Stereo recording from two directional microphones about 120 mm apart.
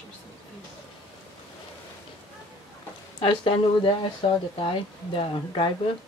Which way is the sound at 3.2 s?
45° left (ahead or behind).